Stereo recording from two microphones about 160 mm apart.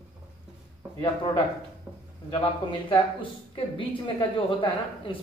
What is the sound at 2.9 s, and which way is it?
A woman's voice, 35° left (ahead or behind).